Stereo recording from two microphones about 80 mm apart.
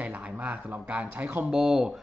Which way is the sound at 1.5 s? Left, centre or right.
Centre.